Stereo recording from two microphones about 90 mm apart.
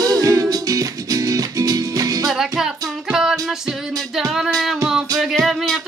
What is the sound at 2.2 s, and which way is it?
Music, 5° right (ahead or behind).